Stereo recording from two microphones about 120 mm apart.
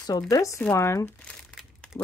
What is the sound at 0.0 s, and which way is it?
Speech, 30° left (ahead or behind).